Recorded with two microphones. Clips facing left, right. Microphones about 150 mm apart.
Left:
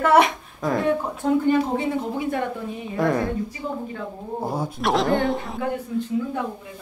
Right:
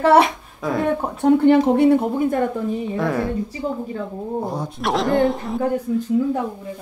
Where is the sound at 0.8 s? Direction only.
70° right (ahead or behind).